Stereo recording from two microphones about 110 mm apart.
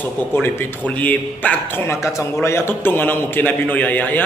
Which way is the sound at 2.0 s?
25° left (ahead or behind).